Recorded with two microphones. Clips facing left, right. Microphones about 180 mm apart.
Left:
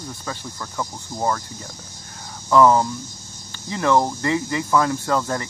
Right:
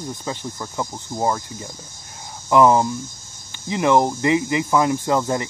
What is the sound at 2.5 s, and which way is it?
Speech, 15° right (ahead or behind).